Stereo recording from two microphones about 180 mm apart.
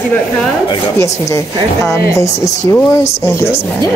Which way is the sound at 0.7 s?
20° left (ahead or behind).